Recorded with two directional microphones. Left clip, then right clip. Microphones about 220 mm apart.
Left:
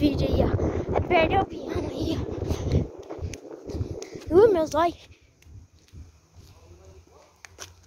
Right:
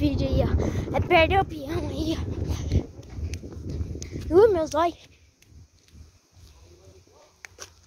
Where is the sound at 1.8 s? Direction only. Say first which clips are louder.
Even; 15° right (ahead or behind).